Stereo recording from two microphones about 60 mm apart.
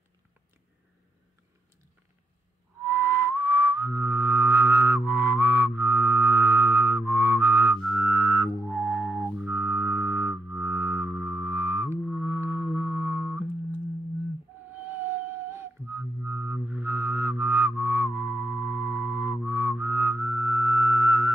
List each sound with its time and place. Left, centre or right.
2.8 s whistling: right
5.8 s music: right
9.5 s music: right
14.7 s whale vocalization: right
16.3 s music: right
16.7 s music: right
19.4 s whistling: right